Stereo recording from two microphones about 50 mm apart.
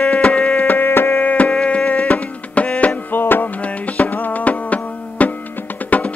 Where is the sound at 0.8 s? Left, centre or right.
Left.